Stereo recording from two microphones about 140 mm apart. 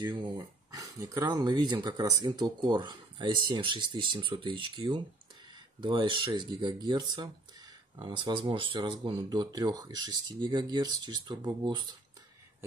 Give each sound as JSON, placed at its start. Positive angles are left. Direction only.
{"t": 0.7, "sound": "speech", "side_deg": -25}